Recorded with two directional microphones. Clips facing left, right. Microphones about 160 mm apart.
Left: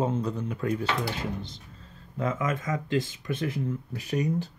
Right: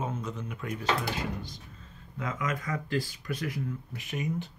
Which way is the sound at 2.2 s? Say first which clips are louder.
Left 5 dB; 25° left (ahead or behind).